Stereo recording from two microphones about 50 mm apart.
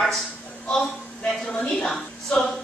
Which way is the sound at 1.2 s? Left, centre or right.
Left.